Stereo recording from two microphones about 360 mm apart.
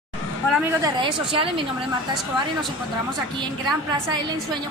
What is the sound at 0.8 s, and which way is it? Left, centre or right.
Speech, centre.